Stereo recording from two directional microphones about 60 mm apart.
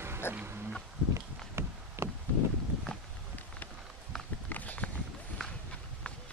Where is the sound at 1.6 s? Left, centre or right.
Right.